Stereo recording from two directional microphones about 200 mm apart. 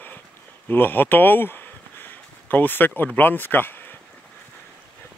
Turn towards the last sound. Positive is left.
turn(degrees=10)  # may be behind; listen again after turning